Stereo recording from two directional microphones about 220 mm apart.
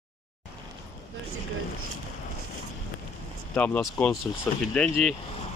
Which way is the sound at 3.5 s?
5° left (ahead or behind).